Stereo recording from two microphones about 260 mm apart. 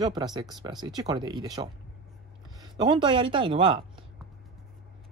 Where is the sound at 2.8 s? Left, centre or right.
Centre.